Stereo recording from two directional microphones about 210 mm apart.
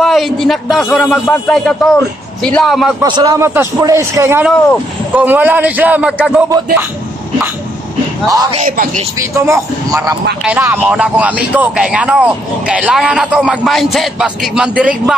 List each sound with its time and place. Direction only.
0.0 s speech: centre (ahead or behind)
3.0 s a man's voice: 20° right (ahead or behind)
8.3 s a man's voice: 20° right (ahead or behind)
8.5 s speech: 40° right (ahead or behind)
9.2 s a man's voice: 15° right (ahead or behind)